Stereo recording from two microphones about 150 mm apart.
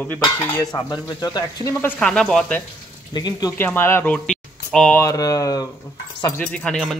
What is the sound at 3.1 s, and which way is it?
Stir, 25° left (ahead or behind).